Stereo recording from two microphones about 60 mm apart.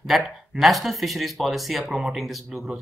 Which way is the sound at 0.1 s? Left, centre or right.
Centre.